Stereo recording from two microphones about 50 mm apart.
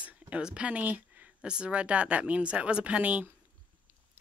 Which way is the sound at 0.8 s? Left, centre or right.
Right.